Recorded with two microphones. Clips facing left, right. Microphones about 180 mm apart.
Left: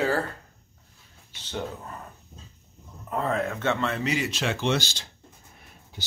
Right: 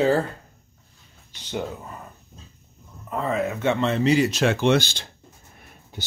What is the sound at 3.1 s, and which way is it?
Speech, centre (ahead or behind).